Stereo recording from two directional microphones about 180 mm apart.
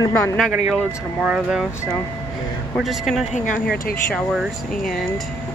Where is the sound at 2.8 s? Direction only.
Centre (ahead or behind).